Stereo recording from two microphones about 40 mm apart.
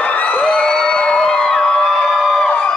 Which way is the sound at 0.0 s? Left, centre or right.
Left.